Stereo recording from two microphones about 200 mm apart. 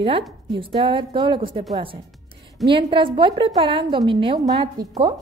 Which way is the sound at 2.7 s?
25° right (ahead or behind).